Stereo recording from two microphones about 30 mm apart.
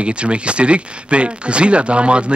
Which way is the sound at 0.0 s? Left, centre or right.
Right.